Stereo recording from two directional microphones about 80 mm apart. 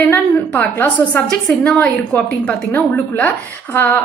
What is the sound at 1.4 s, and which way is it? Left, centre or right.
A woman's voice, centre.